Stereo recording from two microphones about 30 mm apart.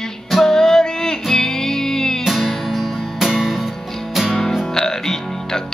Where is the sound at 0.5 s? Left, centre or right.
Centre.